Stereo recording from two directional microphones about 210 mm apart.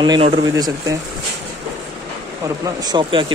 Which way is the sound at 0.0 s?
25° right (ahead or behind).